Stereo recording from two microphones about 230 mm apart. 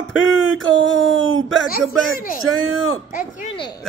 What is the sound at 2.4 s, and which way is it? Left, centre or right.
Speech, left.